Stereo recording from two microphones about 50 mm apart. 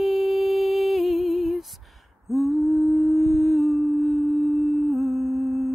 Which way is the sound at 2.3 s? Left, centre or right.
Centre.